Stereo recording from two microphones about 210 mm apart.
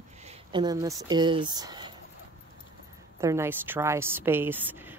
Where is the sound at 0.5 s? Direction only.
20° right (ahead or behind).